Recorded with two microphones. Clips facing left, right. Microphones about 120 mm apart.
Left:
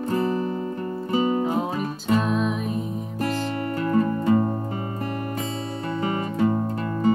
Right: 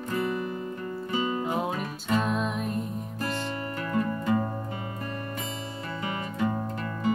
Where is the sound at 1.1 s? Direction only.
40° left (ahead or behind).